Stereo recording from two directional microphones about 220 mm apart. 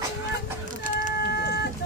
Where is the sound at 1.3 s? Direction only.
50° left (ahead or behind).